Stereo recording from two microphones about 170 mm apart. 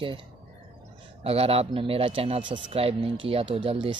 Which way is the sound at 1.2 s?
35° right (ahead or behind).